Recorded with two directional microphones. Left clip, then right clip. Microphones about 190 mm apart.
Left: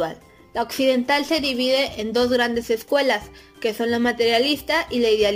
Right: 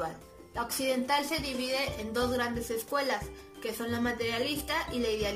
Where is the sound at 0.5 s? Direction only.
55° left (ahead or behind).